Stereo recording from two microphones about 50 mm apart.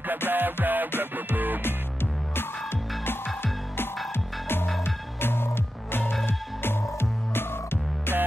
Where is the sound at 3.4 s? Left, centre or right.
Left.